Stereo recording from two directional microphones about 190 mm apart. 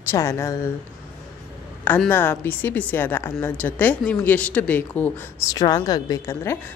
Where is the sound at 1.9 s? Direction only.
10° left (ahead or behind).